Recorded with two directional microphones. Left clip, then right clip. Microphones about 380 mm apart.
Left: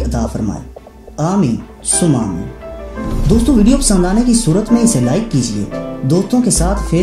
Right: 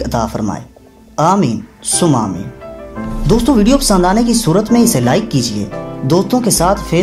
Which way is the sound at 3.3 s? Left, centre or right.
Centre.